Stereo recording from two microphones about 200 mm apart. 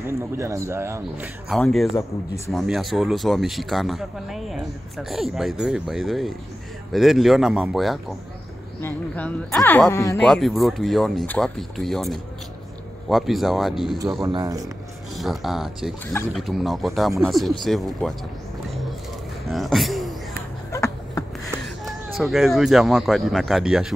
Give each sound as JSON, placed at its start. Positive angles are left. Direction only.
{"t": 0.0, "sound": "speech", "side_deg": -15}
{"t": 1.5, "sound": "speech", "side_deg": 0}
{"t": 8.8, "sound": "speech", "side_deg": 10}
{"t": 10.2, "sound": "speech", "side_deg": 0}
{"t": 14.2, "sound": "speech", "side_deg": -15}
{"t": 15.1, "sound": "speech", "side_deg": 0}
{"t": 19.5, "sound": "a sound", "side_deg": 0}
{"t": 20.7, "sound": "a sound", "side_deg": 15}
{"t": 21.8, "sound": "speech", "side_deg": 0}